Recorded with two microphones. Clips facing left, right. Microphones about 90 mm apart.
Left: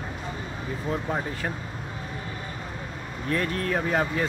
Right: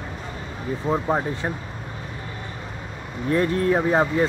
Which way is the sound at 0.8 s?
30° right (ahead or behind).